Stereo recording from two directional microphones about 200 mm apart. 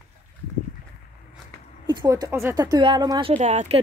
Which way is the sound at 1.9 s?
20° right (ahead or behind).